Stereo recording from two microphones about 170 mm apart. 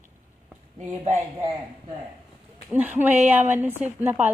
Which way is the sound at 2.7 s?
10° right (ahead or behind).